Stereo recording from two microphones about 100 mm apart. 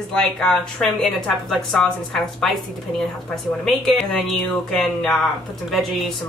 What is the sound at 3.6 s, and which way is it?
A man's voice, centre (ahead or behind).